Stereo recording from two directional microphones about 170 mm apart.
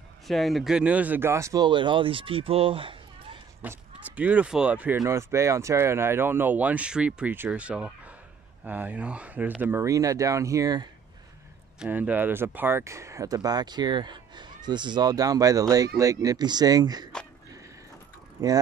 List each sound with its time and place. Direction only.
0.3 s speech: centre (ahead or behind); by 3.3 s 30° right (ahead or behind)
3.6 s speech: 10° right (ahead or behind)
11.8 s speech: 10° right (ahead or behind)
18.4 s speech: 20° right (ahead or behind)